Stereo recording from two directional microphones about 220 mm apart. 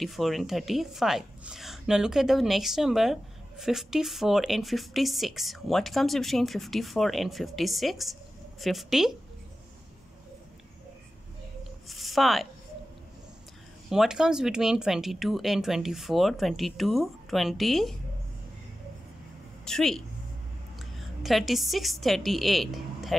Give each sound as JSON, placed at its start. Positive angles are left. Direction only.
{"t": 0.0, "sound": "a woman's voice", "side_deg": 0}
{"t": 11.9, "sound": "a woman's voice", "side_deg": 0}
{"t": 13.8, "sound": "a woman's voice", "side_deg": 0}
{"t": 19.6, "sound": "a woman's voice", "side_deg": 0}